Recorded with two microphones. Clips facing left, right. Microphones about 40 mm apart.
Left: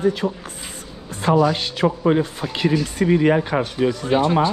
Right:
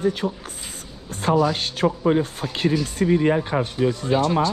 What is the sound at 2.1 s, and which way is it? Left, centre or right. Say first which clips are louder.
Speech: left 2 dB; left.